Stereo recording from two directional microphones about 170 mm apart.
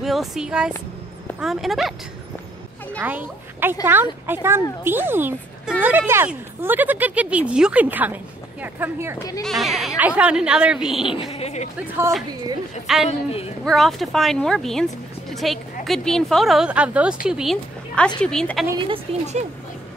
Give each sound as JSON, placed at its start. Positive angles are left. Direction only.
{"t": 0.0, "sound": "speech", "side_deg": 0}
{"t": 3.0, "sound": "speech", "side_deg": -10}
{"t": 9.4, "sound": "speech", "side_deg": 0}
{"t": 11.1, "sound": "a woman's voice", "side_deg": 35}
{"t": 12.8, "sound": "speech", "side_deg": 0}
{"t": 19.1, "sound": "speech", "side_deg": -35}